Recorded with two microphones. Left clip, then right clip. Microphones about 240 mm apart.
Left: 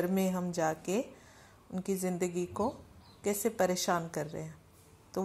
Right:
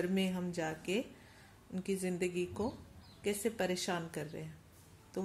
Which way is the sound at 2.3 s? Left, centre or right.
Centre.